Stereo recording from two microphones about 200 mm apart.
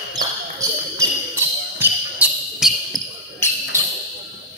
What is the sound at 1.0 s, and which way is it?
Basketball bounce, 10° right (ahead or behind).